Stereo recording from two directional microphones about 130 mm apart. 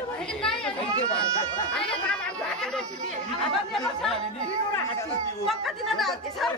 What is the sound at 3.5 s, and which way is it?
Speech, 5° left (ahead or behind).